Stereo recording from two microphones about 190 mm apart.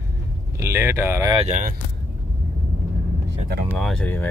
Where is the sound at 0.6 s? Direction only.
15° right (ahead or behind).